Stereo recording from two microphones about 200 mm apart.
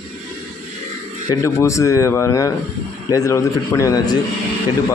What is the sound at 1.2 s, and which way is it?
Speech, 15° left (ahead or behind).